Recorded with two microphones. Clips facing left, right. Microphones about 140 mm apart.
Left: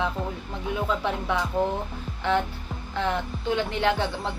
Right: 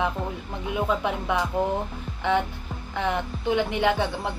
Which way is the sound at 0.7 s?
15° right (ahead or behind).